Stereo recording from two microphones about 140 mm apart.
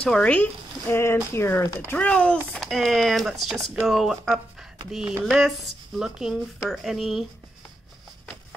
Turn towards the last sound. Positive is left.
turn(degrees=0)  # may be behind; listen again after turning